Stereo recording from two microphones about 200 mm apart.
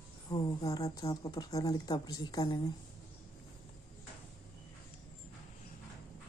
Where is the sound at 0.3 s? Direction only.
20° left (ahead or behind).